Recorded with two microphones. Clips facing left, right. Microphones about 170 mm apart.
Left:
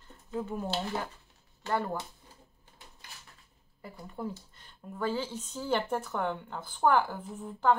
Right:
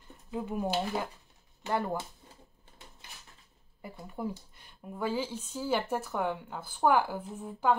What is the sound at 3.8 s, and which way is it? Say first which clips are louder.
A woman's voice: right 1 dB; 15° right (ahead or behind).